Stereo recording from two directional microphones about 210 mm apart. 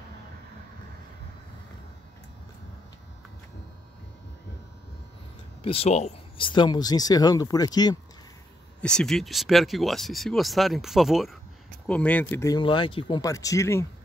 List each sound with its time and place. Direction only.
5.6 s speech: 30° left (ahead or behind)
8.8 s speech: 5° left (ahead or behind)